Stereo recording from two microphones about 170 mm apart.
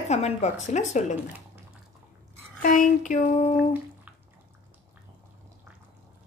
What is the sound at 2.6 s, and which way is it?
A woman's voice, 50° left (ahead or behind).